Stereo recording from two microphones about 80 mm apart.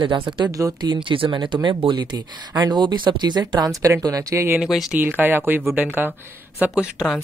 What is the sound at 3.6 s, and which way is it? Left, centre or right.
Speech, right.